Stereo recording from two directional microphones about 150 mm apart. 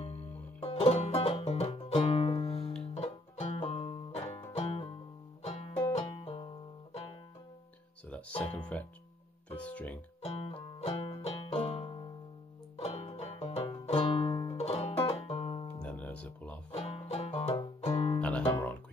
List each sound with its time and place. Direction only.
0.0 s music: 45° left (ahead or behind)
8.5 s speech: 10° left (ahead or behind)
9.6 s music: 10° left (ahead or behind)
10.2 s music: 40° left (ahead or behind)
12.7 s banjo: 45° left (ahead or behind)
13.8 s music: 35° left (ahead or behind)
15.8 s music: 10° left (ahead or behind)
16.7 s music: 40° left (ahead or behind)
18.2 s guitar: 10° left (ahead or behind)